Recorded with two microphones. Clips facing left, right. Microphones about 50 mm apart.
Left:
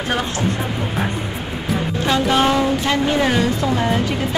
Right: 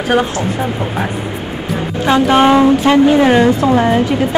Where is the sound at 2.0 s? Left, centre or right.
Right.